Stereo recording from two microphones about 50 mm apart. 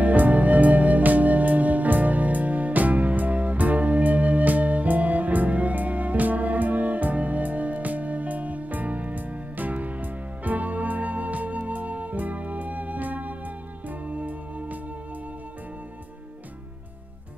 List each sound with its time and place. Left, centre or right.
0.0 s music: right